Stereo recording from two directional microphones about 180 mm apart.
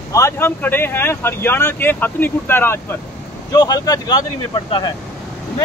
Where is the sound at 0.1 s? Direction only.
15° left (ahead or behind).